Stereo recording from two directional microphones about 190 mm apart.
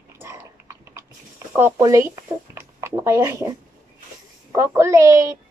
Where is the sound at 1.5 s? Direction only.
15° right (ahead or behind).